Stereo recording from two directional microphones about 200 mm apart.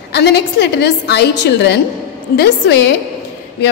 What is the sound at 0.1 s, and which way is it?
A woman's voice, 55° left (ahead or behind).